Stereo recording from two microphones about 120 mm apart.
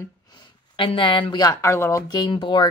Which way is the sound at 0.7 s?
45° left (ahead or behind).